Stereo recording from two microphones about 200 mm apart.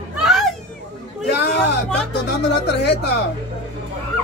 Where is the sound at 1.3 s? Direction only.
60° left (ahead or behind).